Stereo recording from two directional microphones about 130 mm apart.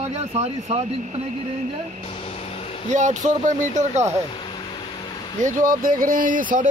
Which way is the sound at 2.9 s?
70° right (ahead or behind).